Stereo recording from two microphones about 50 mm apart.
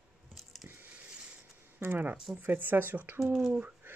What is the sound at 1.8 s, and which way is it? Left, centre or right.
Speech, right.